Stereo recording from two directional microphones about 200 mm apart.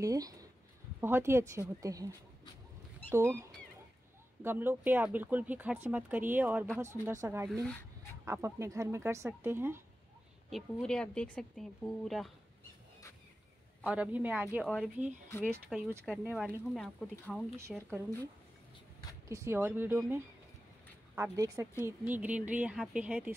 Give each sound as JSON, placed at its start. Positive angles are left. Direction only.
{"t": 0.0, "sound": "speech", "side_deg": -15}
{"t": 3.1, "sound": "speech", "side_deg": -15}
{"t": 7.6, "sound": "dog", "side_deg": 10}
{"t": 8.3, "sound": "speech", "side_deg": -15}
{"t": 10.5, "sound": "speech", "side_deg": 0}
{"t": 13.8, "sound": "speech", "side_deg": -5}
{"t": 17.6, "sound": "speech", "side_deg": -15}
{"t": 19.2, "sound": "speech", "side_deg": -15}